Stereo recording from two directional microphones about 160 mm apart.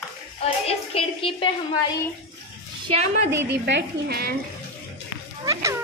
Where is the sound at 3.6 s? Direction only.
85° right.